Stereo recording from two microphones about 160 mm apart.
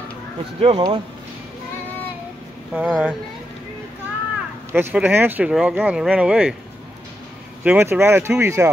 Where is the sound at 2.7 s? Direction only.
5° right (ahead or behind).